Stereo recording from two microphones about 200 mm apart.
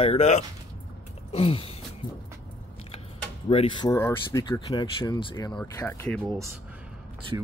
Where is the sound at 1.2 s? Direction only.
30° left (ahead or behind).